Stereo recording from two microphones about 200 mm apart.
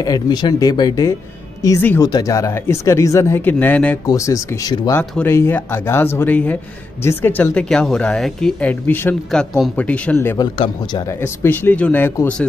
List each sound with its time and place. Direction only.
0.0 s speech: 20° left (ahead or behind)